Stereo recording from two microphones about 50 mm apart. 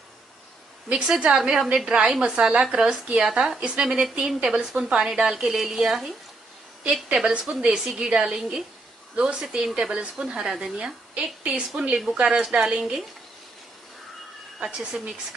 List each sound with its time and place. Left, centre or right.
0.9 s a woman's voice: centre
6.8 s a woman's voice: right
14.6 s a woman's voice: centre